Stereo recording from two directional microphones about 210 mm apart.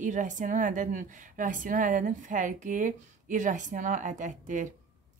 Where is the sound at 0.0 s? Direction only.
35° right (ahead or behind).